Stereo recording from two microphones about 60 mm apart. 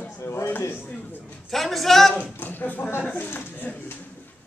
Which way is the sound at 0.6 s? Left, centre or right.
Left.